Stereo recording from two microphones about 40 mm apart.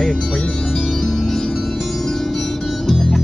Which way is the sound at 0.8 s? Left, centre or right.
Centre.